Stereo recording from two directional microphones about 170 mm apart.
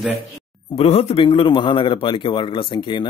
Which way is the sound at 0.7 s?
35° left (ahead or behind).